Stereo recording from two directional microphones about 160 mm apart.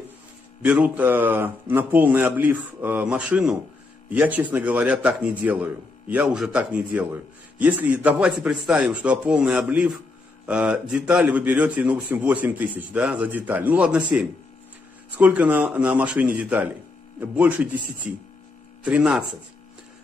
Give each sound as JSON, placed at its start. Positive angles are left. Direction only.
{"t": 0.6, "sound": "a man's voice", "side_deg": -10}
{"t": 17.8, "sound": "speech", "side_deg": -55}
{"t": 18.9, "sound": "speech", "side_deg": -5}